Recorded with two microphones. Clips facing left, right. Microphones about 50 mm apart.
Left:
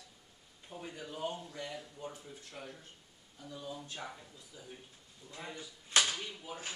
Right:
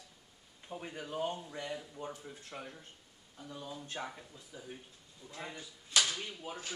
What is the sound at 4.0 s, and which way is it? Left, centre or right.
Speech, right.